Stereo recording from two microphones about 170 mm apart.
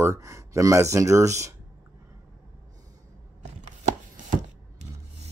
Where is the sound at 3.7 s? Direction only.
45° right (ahead or behind).